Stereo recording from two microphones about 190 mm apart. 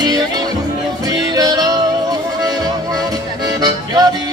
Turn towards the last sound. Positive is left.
turn(degrees=-20)  # may be behind; listen again after turning